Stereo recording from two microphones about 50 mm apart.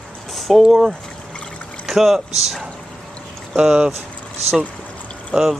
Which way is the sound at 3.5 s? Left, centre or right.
Centre.